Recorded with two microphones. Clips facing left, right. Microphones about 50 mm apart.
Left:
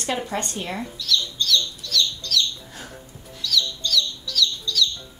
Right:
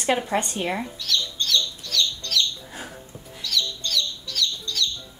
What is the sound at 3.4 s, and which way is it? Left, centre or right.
Chicken, right.